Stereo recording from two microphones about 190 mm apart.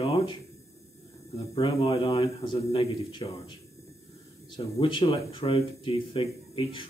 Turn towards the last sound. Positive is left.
turn(degrees=25)  # may be behind; listen again after turning